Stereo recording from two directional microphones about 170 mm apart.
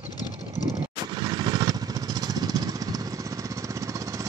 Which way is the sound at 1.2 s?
25° right (ahead or behind).